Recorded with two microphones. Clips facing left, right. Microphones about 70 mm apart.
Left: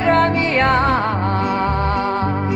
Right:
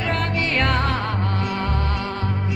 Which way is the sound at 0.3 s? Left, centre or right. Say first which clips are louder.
Left 5 dB; left.